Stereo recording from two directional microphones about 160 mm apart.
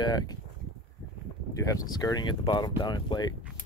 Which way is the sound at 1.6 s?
20° left (ahead or behind).